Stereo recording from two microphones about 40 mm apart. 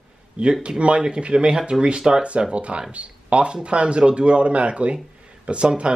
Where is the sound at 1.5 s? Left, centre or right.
Centre.